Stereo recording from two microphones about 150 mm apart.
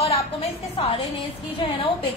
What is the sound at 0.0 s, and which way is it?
A woman's voice, 45° left (ahead or behind).